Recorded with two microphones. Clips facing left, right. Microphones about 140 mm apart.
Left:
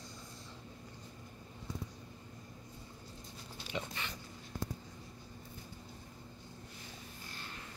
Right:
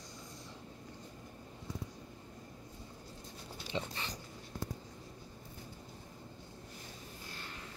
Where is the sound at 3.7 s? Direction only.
30° right (ahead or behind).